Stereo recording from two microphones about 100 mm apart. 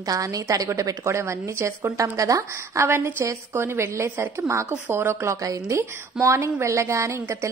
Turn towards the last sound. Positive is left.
turn(degrees=-30)  # may be behind; listen again after turning